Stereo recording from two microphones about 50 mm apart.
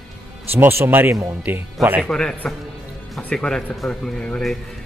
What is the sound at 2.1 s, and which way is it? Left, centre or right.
Speech, left.